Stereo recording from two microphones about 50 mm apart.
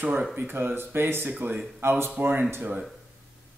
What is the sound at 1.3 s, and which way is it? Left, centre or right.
Speech, right.